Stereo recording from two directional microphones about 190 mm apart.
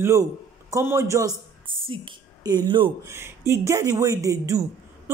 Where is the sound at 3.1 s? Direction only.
15° right (ahead or behind).